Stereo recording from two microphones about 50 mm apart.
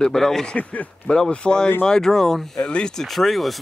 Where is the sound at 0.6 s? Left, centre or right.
Left.